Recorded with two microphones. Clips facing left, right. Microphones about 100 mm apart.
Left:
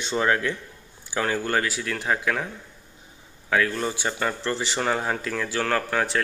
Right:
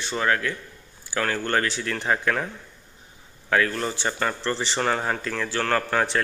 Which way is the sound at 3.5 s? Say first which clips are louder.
Even; 5° left (ahead or behind).